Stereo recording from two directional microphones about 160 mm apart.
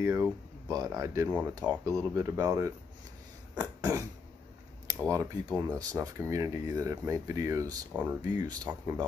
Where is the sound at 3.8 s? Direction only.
20° right (ahead or behind).